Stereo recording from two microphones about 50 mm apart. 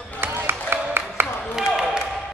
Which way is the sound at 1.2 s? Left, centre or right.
Right.